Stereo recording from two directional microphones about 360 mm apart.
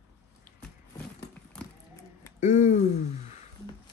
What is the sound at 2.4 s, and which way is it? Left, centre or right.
Speech, centre.